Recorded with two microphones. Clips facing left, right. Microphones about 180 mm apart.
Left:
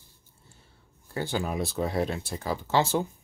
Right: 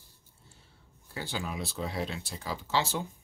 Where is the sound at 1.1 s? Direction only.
50° left (ahead or behind).